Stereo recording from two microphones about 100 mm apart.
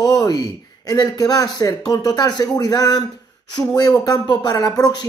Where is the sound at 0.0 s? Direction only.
35° left (ahead or behind).